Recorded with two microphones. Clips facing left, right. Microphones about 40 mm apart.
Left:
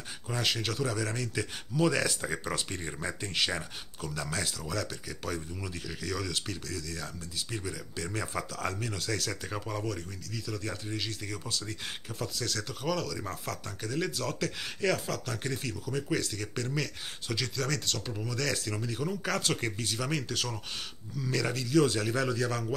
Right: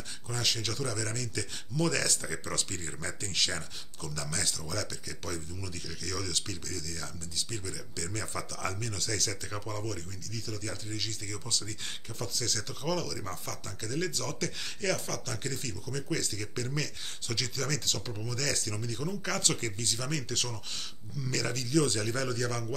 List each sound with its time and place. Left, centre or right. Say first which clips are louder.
0.3 s speech: left 2 dB; centre